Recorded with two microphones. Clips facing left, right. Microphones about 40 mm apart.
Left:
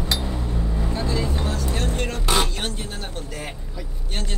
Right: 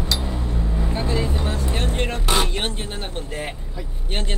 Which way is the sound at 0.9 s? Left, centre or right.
Right.